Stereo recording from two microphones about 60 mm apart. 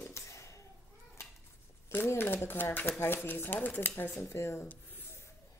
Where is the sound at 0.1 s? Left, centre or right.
Left.